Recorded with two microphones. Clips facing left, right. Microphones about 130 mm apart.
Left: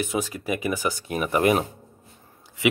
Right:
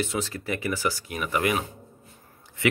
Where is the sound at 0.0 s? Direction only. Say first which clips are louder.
Left 2 dB; 15° left (ahead or behind).